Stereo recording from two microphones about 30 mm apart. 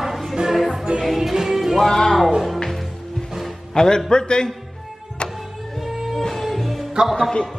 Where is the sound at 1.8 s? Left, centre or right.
Centre.